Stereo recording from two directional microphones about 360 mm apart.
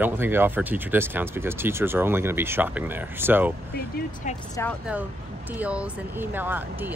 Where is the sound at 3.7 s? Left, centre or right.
Left.